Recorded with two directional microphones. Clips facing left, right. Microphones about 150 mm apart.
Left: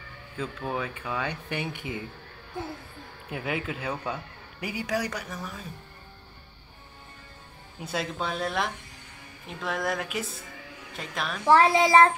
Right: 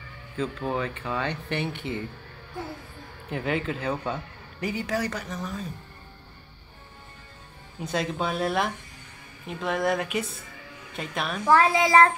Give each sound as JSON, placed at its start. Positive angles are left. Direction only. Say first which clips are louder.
{"t": 0.4, "sound": "speech", "louder": "right 3 dB", "side_deg": 5}
{"t": 3.3, "sound": "speech", "louder": "right 4 dB", "side_deg": 10}
{"t": 7.8, "sound": "speech", "louder": "right 3 dB", "side_deg": 0}
{"t": 11.4, "sound": "a child's voice", "louder": "left 1 dB", "side_deg": 30}